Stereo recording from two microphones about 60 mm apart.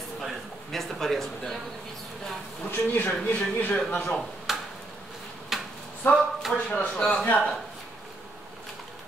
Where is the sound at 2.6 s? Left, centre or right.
Left.